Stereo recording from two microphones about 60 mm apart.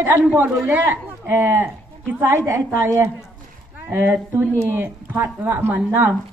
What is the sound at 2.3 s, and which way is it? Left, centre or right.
A woman's voice, right.